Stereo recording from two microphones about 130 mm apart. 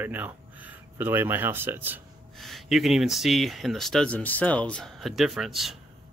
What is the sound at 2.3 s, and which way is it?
Speech, centre (ahead or behind).